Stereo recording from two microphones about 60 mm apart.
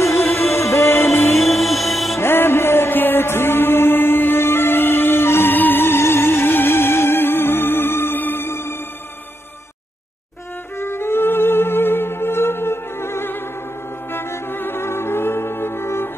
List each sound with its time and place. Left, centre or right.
0.0 s music: left
1.5 s music: centre
2.1 s music: left
10.8 s music: left